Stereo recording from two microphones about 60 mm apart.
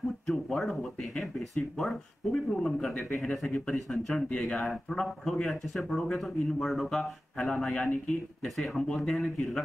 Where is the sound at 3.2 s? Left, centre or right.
Left; by 7.0 s centre.